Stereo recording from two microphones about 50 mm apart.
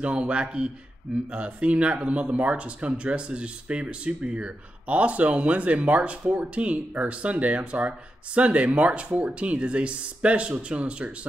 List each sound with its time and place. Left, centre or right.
0.0 s speech: right